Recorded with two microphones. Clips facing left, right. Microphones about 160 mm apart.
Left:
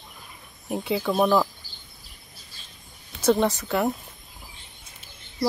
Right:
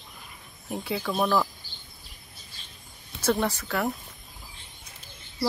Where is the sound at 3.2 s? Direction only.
20° left (ahead or behind).